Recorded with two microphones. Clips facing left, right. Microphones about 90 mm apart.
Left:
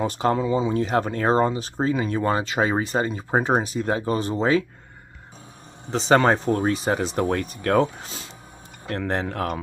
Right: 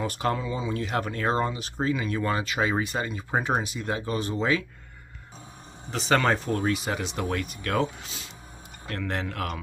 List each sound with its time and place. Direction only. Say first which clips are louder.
0.0 s speech: left 6 dB; 25° left (ahead or behind)
5.9 s speech: left 5 dB; 30° left (ahead or behind)